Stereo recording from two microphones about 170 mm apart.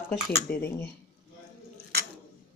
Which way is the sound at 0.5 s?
10° left (ahead or behind).